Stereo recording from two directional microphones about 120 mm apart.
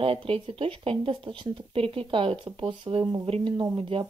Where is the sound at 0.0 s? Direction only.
50° right (ahead or behind).